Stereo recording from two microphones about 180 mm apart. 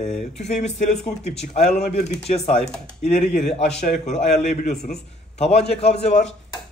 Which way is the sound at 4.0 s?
40° left (ahead or behind).